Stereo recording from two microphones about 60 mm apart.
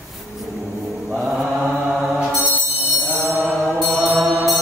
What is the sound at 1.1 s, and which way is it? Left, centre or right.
Mantra, centre.